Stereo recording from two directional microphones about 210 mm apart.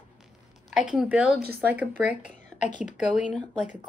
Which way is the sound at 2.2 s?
35° left (ahead or behind).